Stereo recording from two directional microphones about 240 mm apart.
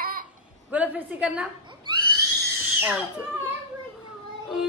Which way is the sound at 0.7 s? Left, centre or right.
Centre.